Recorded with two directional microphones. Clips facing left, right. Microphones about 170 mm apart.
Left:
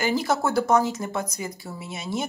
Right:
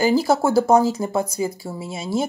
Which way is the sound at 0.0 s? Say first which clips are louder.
Right 6 dB; 30° right (ahead or behind).